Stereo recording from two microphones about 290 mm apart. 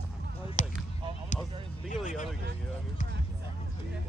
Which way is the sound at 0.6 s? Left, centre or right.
Left.